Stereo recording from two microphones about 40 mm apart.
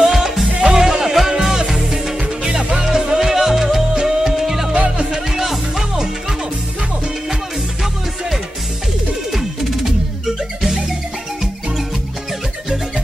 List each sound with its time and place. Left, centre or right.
0.0 s music: centre
3.9 s music: centre
4.3 s music: centre
4.7 s music: right
5.1 s music: centre
9.3 s music: centre